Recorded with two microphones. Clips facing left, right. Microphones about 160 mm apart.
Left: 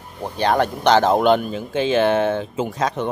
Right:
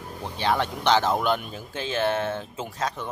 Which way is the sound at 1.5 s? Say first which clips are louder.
Left 11 dB; 90° left.